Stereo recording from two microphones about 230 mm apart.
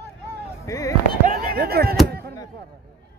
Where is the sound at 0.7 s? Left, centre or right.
Centre.